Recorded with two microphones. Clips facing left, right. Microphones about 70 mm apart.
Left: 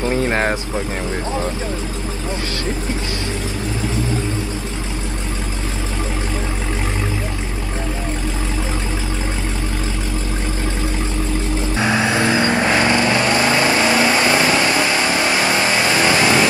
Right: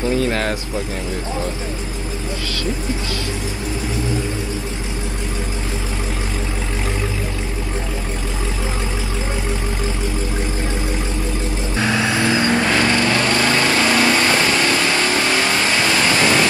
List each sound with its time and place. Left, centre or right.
0.0 s vehicle: left
11.7 s vehicle: left